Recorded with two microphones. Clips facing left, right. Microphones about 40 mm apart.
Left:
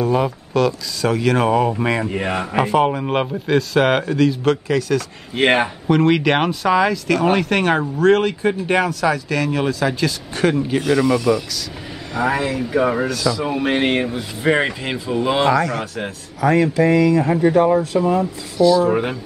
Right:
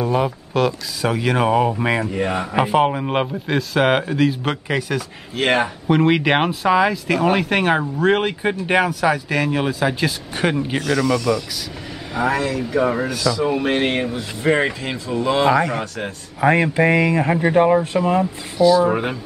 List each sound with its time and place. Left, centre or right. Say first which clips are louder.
0.1 s speech: left 1 dB; centre
2.1 s speech: even; centre
2.5 s speech: left 1 dB; centre
5.3 s speech: left 2 dB; left
5.9 s speech: left 1 dB; centre
10.8 s speech: left 2 dB; centre
12.1 s speech: even; centre
12.4 s speech: left 1 dB; centre
15.5 s speech: even; centre
16.3 s speech: even; right
18.6 s speech: even; centre